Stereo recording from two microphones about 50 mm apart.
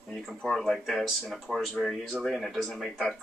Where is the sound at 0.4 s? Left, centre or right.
Centre.